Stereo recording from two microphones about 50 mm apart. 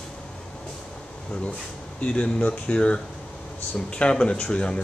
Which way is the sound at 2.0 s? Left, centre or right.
Left.